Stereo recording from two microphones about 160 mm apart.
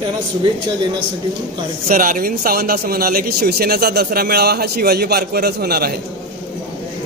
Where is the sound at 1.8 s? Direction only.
60° right (ahead or behind); by 5.9 s 75° right (ahead or behind).